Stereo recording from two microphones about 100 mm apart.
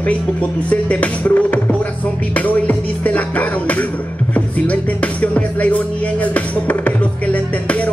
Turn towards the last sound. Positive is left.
turn(degrees=15)  # may be behind; listen again after turning